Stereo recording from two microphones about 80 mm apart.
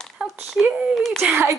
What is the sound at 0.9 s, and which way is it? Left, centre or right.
Speech, centre.